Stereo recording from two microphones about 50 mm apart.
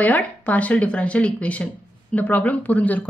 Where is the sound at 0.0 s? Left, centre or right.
Left.